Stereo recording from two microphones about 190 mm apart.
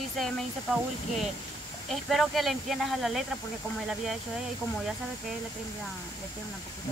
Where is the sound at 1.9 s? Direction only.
Centre (ahead or behind).